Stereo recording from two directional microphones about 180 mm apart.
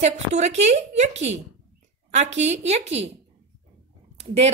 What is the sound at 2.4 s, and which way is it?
Speech, 40° right (ahead or behind).